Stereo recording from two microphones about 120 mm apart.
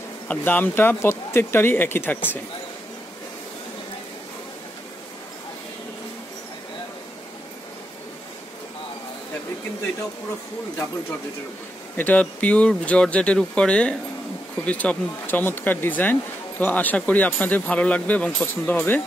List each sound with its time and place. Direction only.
0.3 s speech: 15° left (ahead or behind)
12.0 s speech: 10° left (ahead or behind)